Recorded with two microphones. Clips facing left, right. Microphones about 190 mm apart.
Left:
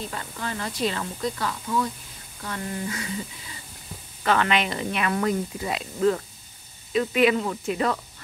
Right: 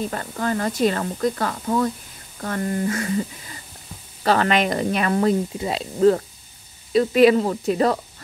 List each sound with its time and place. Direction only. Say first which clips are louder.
0.1 s speech: right 8 dB; 50° right (ahead or behind)
4.2 s speech: right 4 dB; 35° right (ahead or behind)